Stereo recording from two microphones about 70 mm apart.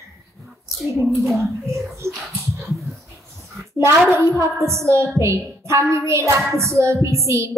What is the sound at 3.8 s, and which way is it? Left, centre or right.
A woman's voice, right.